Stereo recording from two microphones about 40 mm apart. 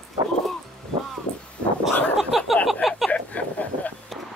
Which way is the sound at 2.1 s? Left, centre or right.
Centre.